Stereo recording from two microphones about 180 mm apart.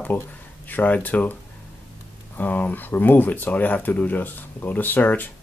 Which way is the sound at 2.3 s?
10° left (ahead or behind).